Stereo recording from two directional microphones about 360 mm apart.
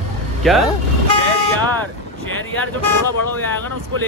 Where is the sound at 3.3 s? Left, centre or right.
Centre.